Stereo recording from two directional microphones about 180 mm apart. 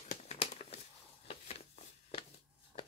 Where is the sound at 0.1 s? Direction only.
35° left (ahead or behind).